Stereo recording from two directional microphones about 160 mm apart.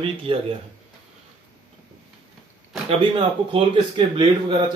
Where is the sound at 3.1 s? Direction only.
30° right (ahead or behind).